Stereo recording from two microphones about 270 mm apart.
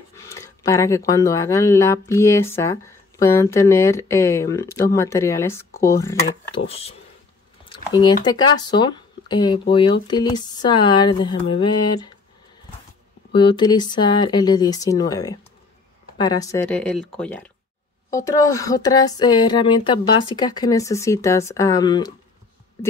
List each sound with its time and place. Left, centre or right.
0.1 s speech: centre
6.7 s speech: left
13.3 s speech: centre